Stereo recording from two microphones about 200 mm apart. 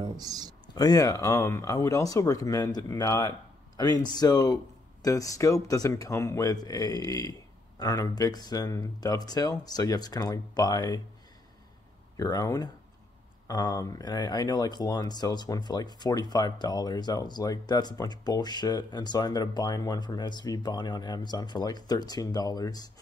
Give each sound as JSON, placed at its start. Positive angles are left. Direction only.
{"t": 0.0, "sound": "speech", "side_deg": -20}
{"t": 0.7, "sound": "speech", "side_deg": 20}
{"t": 12.2, "sound": "speech", "side_deg": 15}